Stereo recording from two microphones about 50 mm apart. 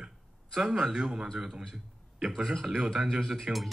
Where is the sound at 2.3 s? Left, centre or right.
Centre.